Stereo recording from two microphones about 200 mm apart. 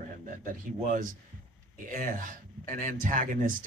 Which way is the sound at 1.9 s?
40° right (ahead or behind).